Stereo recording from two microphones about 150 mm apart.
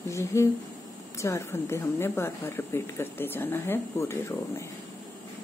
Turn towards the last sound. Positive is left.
turn(degrees=20)  # may be behind; listen again after turning